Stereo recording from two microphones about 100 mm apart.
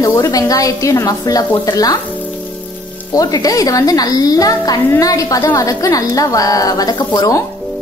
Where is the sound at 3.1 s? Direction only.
35° left (ahead or behind).